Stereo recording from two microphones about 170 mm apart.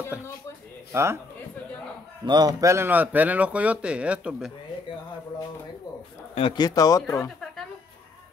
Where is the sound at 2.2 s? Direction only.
25° right (ahead or behind); by 4.5 s 5° right (ahead or behind).